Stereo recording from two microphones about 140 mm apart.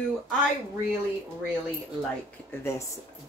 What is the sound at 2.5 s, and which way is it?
Speech, 20° left (ahead or behind).